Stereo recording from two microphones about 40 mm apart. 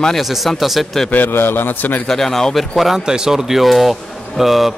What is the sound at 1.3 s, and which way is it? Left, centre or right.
Speech, left.